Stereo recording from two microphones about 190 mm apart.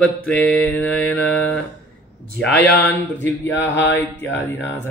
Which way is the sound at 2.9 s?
10° left (ahead or behind).